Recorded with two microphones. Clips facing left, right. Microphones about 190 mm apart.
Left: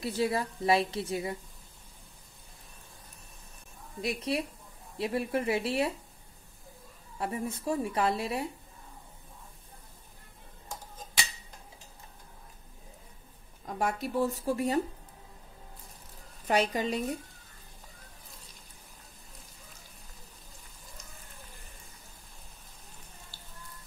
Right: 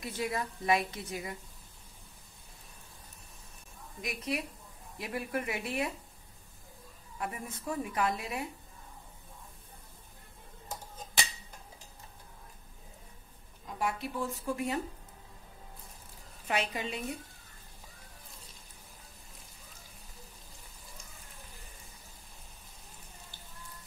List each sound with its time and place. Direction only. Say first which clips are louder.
0.0 s a woman's voice: left 5 dB; 30° left (ahead or behind)
4.0 s a woman's voice: left 5 dB; 30° left (ahead or behind)
7.2 s a woman's voice: left 5 dB; 30° left (ahead or behind)
13.7 s a woman's voice: left 5 dB; 45° left (ahead or behind)
16.4 s a woman's voice: left 6 dB; 40° left (ahead or behind)